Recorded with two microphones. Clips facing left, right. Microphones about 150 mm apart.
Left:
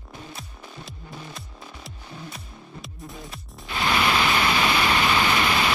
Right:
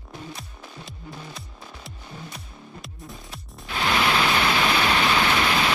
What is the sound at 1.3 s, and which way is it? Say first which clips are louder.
Music: even; centre (ahead or behind).